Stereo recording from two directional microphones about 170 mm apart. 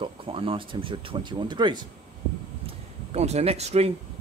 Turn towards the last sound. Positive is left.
turn(degrees=-40)  # may be behind; listen again after turning